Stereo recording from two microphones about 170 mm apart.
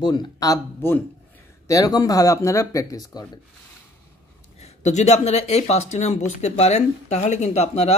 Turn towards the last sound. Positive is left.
turn(degrees=40)  # may be behind; listen again after turning